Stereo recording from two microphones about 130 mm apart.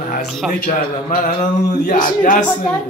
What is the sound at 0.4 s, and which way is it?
Speech, 5° right (ahead or behind).